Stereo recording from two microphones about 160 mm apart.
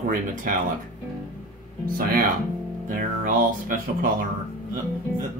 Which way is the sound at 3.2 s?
60° right (ahead or behind).